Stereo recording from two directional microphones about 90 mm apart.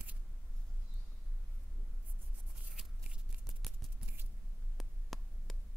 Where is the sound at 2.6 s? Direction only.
5° right (ahead or behind).